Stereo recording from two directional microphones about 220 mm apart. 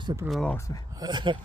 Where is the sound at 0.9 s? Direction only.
20° right (ahead or behind).